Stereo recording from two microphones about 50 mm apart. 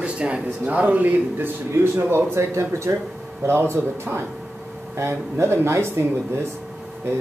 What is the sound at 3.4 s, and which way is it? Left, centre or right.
Speech, right.